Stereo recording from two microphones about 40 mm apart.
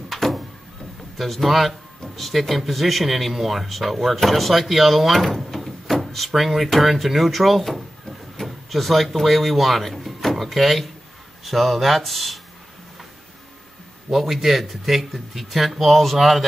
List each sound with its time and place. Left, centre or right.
0.1 s a sound: centre
1.1 s speech: centre
14.1 s speech: centre